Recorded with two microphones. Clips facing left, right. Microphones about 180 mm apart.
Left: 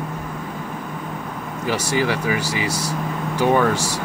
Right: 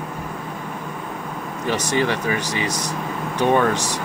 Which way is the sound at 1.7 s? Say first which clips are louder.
Even; 10° left (ahead or behind).